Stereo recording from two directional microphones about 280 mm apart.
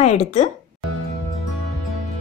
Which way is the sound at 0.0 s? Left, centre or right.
Left.